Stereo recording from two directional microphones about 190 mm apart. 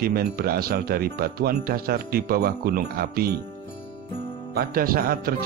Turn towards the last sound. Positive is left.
turn(degrees=-50)  # may be behind; listen again after turning